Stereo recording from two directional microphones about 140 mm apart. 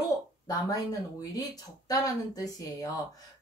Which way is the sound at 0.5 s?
25° left (ahead or behind).